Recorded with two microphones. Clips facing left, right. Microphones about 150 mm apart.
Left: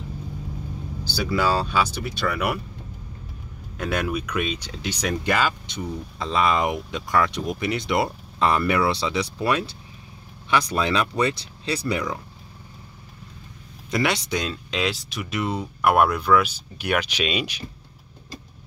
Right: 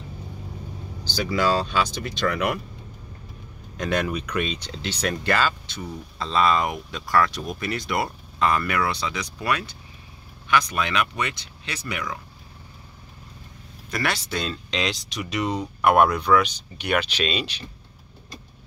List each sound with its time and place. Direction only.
1.0 s speech: 10° left (ahead or behind)
3.7 s speech: 5° left (ahead or behind); by 12.2 s 30° left (ahead or behind)
13.8 s speech: 20° left (ahead or behind)